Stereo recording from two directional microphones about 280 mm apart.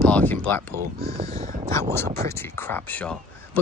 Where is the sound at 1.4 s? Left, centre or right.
Right.